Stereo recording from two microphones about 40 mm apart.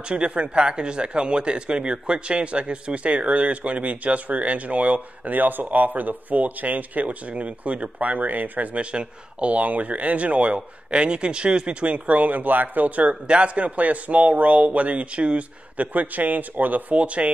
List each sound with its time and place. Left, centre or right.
0.1 s speech: right
13.1 s speech: right